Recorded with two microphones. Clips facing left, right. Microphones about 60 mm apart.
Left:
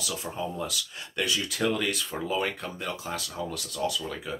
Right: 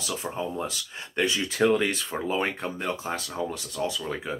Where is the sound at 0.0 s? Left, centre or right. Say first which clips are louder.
Right 2 dB; right.